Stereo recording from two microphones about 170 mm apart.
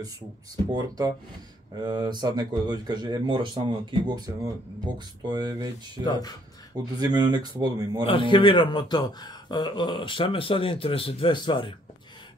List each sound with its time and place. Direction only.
0.7 s speech: 20° right (ahead or behind)
6.0 s a man's voice: 20° left (ahead or behind)
6.8 s speech: 25° right (ahead or behind)
8.1 s a man's voice: 30° left (ahead or behind)